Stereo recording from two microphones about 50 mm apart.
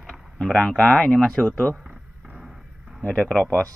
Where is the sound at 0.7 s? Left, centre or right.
Centre.